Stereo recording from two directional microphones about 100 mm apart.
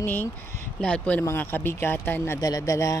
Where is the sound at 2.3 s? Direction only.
40° left (ahead or behind).